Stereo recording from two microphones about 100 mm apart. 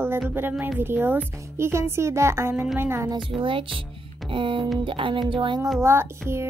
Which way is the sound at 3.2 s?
60° right (ahead or behind).